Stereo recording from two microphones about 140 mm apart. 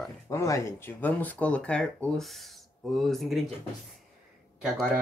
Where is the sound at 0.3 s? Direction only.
20° left (ahead or behind); by 3.4 s centre (ahead or behind).